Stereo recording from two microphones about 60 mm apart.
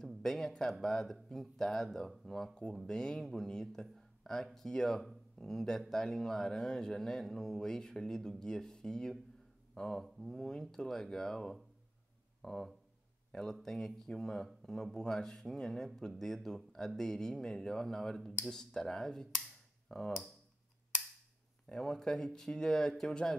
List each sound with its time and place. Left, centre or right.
0.2 s speech: centre
21.6 s speech: centre